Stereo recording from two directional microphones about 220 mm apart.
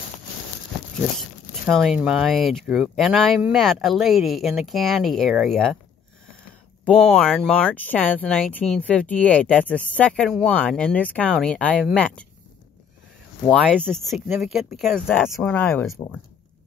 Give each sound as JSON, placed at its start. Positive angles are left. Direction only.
{"t": 1.7, "sound": "speech", "side_deg": 0}
{"t": 6.8, "sound": "speech", "side_deg": 5}
{"t": 13.5, "sound": "speech", "side_deg": 5}